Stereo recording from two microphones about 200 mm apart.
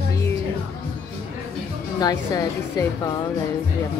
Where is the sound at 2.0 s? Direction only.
15° left (ahead or behind).